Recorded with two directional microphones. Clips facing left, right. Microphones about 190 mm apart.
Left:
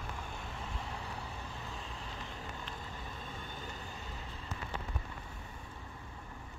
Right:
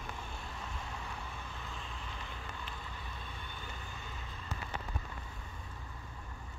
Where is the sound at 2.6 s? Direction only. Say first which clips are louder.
Left 2 dB; 45° left (ahead or behind).